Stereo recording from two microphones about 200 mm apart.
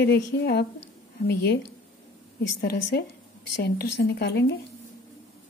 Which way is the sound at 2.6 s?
55° left (ahead or behind).